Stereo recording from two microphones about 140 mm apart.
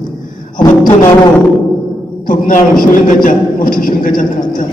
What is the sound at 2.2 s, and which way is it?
A man's voice, 70° left (ahead or behind).